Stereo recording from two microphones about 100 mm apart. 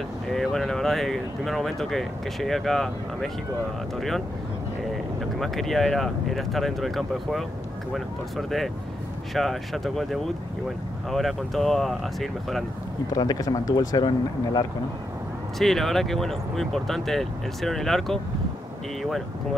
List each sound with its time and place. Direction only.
0.3 s speech: 5° left (ahead or behind)
5.2 s speech: 5° left (ahead or behind)
13.1 s speech: 40° left (ahead or behind)
15.6 s speech: centre (ahead or behind)